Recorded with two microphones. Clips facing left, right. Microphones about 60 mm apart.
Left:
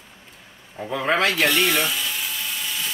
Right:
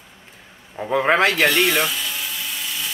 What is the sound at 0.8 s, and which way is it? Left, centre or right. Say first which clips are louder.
Speech: right 4 dB; right.